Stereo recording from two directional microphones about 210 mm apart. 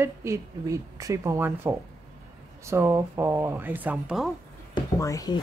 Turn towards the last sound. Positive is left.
turn(degrees=15)  # may be behind; listen again after turning